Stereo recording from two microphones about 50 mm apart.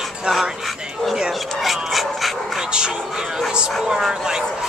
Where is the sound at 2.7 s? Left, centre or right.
Centre.